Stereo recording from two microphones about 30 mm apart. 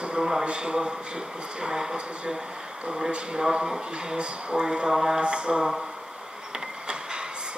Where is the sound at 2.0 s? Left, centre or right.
Right.